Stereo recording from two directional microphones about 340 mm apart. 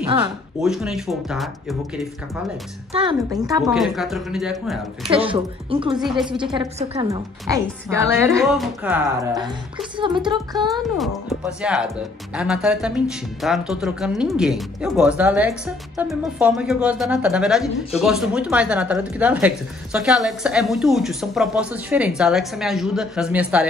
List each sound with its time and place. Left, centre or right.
0.0 s speech: centre
0.6 s speech: centre
2.9 s speech: centre
5.0 s a woman's voice: centre
5.9 s speech: centre
6.3 s a woman's voice: centre
10.7 s speech: centre